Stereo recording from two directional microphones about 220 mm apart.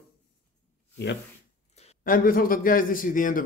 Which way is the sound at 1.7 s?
35° left (ahead or behind).